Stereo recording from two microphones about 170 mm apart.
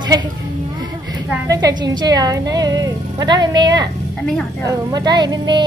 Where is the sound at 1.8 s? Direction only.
25° right (ahead or behind).